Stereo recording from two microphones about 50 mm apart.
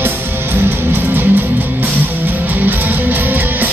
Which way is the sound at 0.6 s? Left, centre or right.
Right.